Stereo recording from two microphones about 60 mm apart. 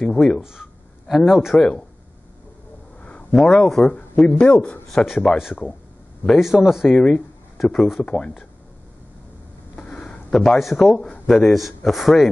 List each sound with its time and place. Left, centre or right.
0.0 s speech: centre
0.4 s a sound: centre
1.1 s a man's voice: centre
1.6 s speech: centre
3.0 s a sound: left
3.3 s a man's voice: centre
4.4 s a man's voice: centre
4.8 s a man's voice: centre
6.4 s a man's voice: centre
6.9 s speech: centre
9.8 s a sound: centre
11.2 s a man's voice: centre